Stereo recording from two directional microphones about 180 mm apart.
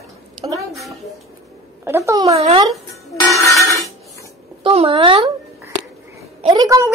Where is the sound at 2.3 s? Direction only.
35° right (ahead or behind).